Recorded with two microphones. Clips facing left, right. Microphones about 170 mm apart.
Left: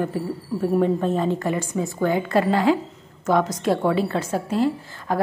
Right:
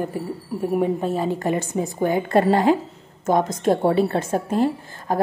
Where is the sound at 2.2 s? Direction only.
50° right (ahead or behind).